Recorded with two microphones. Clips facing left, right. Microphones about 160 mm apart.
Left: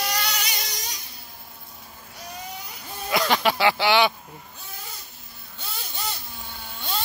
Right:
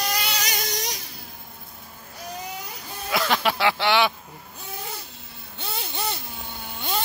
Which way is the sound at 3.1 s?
Centre (ahead or behind).